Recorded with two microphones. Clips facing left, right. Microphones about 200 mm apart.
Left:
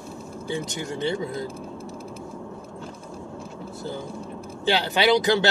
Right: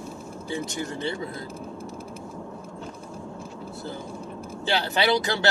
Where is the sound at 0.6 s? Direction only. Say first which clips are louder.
Left 2 dB; 20° left (ahead or behind).